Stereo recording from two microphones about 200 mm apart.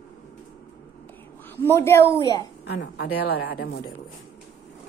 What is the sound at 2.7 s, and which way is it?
A woman's voice, 55° left (ahead or behind).